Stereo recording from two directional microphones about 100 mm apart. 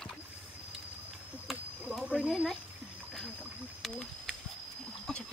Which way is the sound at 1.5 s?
Centre (ahead or behind).